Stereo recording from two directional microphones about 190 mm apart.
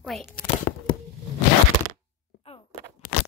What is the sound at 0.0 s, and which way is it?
Speech, centre (ahead or behind).